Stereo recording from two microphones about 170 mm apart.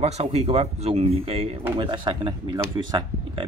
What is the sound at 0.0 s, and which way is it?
Speech, 40° right (ahead or behind).